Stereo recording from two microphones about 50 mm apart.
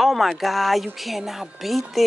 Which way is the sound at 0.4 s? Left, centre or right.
Centre.